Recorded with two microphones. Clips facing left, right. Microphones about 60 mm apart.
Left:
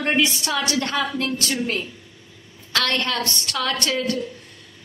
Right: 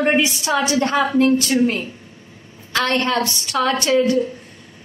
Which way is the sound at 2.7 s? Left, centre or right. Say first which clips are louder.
Right 4 dB; right.